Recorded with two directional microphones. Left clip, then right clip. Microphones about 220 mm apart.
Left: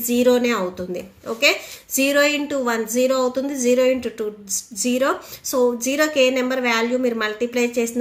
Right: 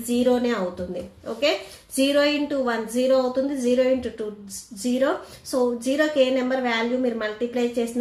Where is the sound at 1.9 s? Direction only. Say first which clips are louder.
Left 3 dB; 30° left (ahead or behind).